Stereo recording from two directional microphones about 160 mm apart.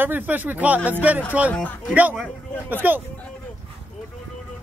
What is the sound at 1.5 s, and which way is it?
Speech, 10° left (ahead or behind).